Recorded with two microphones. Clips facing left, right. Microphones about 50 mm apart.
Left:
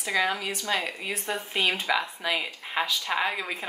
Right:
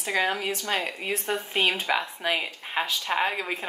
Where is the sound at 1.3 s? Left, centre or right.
Right.